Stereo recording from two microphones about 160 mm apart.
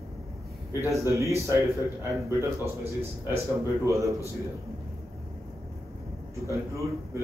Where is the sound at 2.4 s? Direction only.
15° right (ahead or behind).